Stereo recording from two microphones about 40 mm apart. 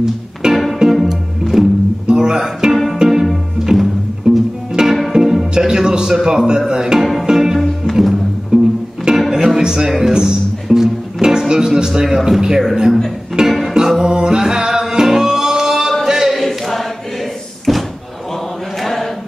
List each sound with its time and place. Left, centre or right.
0.0 s music: centre
6.2 s a man's voice: centre
7.0 s music: centre
7.9 s music: centre
8.5 s music: centre
12.3 s a man's voice: centre
13.4 s music: centre
16.1 s a sound: centre
16.3 s choir: centre
17.7 s a sound: centre
18.8 s chant: centre